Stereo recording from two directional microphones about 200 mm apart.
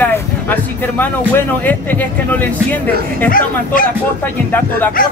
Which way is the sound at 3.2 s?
45° left (ahead or behind).